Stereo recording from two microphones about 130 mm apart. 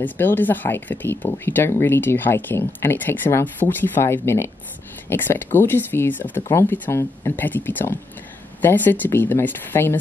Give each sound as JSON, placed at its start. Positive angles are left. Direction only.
{"t": 0.0, "sound": "speech", "side_deg": 15}